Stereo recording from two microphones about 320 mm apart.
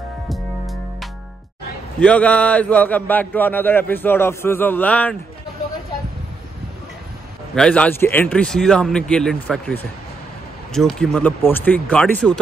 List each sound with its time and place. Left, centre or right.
2.0 s a man's voice: centre
7.5 s a man's voice: centre